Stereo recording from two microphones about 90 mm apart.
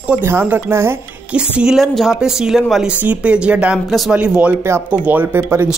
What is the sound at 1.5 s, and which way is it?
A woman's voice, 5° right (ahead or behind).